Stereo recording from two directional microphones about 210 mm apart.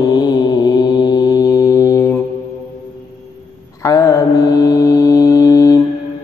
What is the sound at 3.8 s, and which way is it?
Mantra, 15° left (ahead or behind).